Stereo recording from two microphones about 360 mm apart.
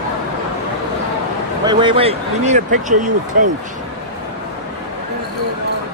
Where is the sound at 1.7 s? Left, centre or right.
Centre.